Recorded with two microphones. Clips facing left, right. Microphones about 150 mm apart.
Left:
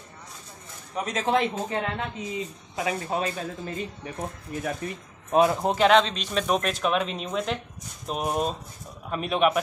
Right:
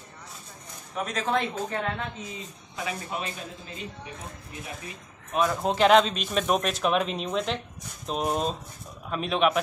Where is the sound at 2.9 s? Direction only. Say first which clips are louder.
Left 6 dB; 35° left (ahead or behind).